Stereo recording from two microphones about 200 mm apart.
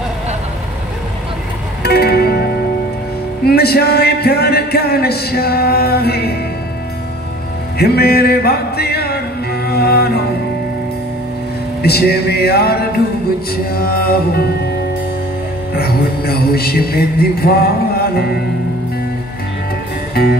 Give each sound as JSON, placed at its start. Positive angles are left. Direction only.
{"t": 1.8, "sound": "music", "side_deg": 50}
{"t": 3.4, "sound": "speech", "side_deg": 50}
{"t": 7.8, "sound": "speech", "side_deg": 50}
{"t": 11.8, "sound": "speech", "side_deg": 50}
{"t": 15.7, "sound": "speech", "side_deg": 50}
{"t": 20.2, "sound": "speech", "side_deg": 50}